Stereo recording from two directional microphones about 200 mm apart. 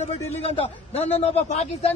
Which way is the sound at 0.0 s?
30° left (ahead or behind).